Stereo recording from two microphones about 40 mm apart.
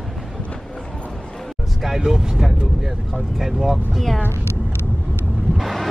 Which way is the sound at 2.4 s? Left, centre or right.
Centre.